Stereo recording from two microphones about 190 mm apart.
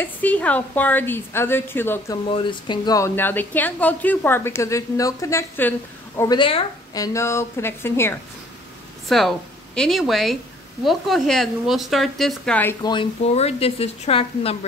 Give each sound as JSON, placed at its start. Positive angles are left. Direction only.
{"t": 0.0, "sound": "a woman's voice", "side_deg": 10}
{"t": 2.2, "sound": "a woman's voice", "side_deg": 25}
{"t": 6.3, "sound": "a woman's voice", "side_deg": 25}
{"t": 13.2, "sound": "speech", "side_deg": 35}